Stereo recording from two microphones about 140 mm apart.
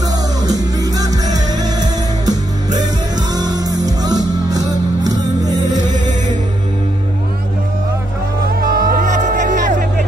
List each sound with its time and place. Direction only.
0.4 s music: 25° right (ahead or behind)
8.5 s music: 85° right; by 9.8 s 65° right (ahead or behind)